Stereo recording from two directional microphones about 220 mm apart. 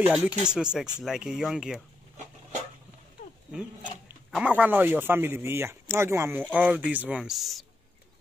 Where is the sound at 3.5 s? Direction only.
Centre (ahead or behind).